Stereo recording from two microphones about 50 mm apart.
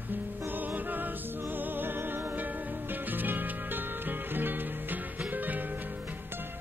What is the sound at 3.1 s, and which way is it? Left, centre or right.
Music, right.